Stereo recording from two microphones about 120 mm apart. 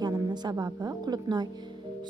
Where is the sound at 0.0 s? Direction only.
35° right (ahead or behind).